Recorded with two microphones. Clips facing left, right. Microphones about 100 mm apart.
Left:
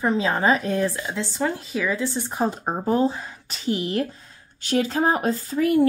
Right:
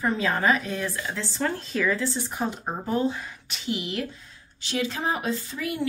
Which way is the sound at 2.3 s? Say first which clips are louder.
Left 5 dB; 35° left (ahead or behind).